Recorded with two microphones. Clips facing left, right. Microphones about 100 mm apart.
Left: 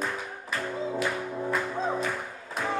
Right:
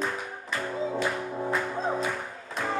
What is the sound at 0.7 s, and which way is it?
Music, centre (ahead or behind).